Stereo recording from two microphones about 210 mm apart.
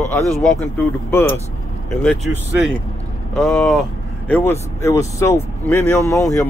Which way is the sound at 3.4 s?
Centre (ahead or behind).